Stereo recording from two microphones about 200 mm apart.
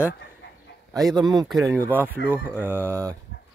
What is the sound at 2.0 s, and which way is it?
Speech, 10° right (ahead or behind).